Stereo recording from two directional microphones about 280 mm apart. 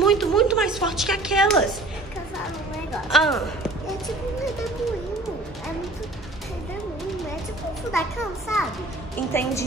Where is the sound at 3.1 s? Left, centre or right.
Centre.